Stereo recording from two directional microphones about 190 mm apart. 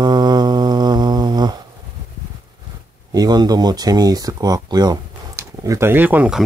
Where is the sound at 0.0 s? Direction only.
20° right (ahead or behind).